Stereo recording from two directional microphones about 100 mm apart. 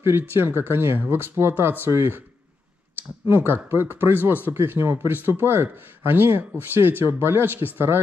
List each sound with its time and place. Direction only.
0.0 s speech: 25° right (ahead or behind)
3.3 s speech: 20° right (ahead or behind)